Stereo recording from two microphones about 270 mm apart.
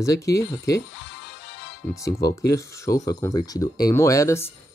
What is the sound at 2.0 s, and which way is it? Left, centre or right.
Speech, centre.